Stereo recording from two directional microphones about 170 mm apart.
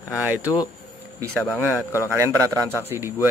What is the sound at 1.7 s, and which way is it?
Speech, 15° left (ahead or behind).